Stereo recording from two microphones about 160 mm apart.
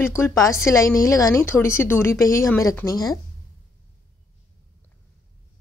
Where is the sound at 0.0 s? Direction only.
15° left (ahead or behind).